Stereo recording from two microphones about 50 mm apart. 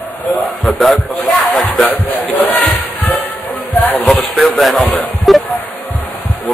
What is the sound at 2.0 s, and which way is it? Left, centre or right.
Speech, left.